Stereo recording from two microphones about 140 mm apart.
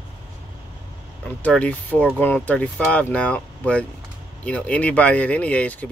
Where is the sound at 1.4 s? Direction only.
10° left (ahead or behind).